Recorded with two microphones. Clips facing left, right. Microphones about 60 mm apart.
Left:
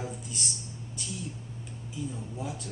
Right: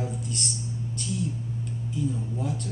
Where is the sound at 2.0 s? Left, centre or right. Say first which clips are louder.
Right 7 dB; centre.